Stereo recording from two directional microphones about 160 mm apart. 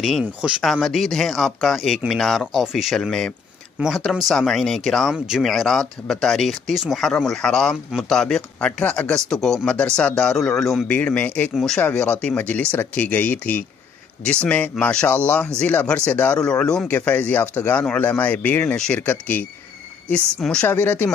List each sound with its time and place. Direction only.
0.6 s speech: centre (ahead or behind)